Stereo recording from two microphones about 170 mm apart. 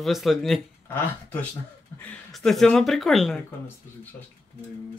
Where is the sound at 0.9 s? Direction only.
10° left (ahead or behind).